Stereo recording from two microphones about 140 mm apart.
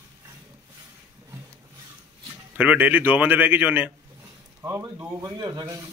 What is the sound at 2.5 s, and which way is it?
A man's voice, 10° right (ahead or behind).